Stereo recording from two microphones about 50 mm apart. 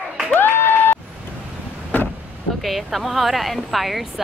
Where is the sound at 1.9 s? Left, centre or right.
Left.